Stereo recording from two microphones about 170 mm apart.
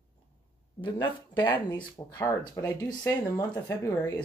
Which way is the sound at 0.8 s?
25° left (ahead or behind).